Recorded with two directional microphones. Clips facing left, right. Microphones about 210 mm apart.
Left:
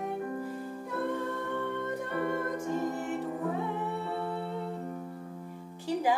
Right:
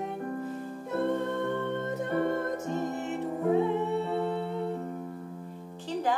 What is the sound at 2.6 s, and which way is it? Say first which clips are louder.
Music: even; 25° right (ahead or behind).